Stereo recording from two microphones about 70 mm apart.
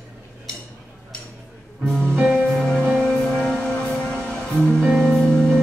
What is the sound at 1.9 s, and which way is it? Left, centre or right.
Music, centre.